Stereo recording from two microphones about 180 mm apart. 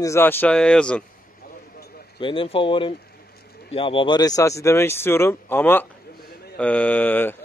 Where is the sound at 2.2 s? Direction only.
30° left (ahead or behind).